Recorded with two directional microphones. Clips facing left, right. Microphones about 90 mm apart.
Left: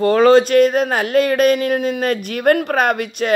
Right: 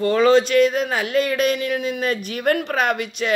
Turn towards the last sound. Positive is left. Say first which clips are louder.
# left 4 dB
turn(degrees=45)  # may be behind; listen again after turning